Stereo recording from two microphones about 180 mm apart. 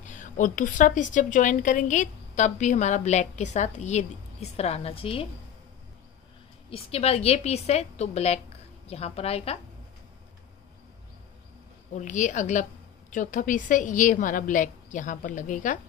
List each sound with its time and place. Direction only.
0.0 s a woman's voice: 45° left (ahead or behind)
6.7 s a woman's voice: 35° left (ahead or behind)
11.9 s a woman's voice: 45° left (ahead or behind)